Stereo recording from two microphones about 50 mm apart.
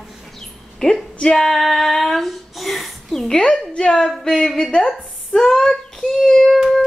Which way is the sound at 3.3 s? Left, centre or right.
Left.